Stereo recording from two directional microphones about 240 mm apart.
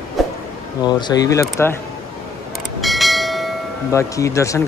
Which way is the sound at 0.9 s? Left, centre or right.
Centre.